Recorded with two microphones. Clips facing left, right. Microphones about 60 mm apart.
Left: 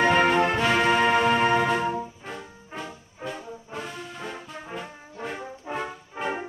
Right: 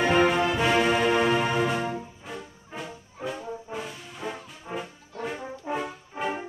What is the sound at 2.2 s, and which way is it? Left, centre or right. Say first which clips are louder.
Music: left 1 dB; centre.